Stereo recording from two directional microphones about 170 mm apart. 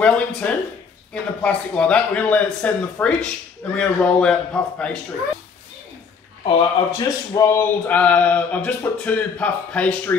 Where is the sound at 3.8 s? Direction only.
5° left (ahead or behind).